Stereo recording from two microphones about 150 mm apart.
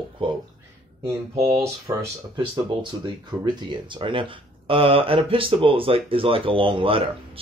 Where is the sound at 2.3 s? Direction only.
30° right (ahead or behind).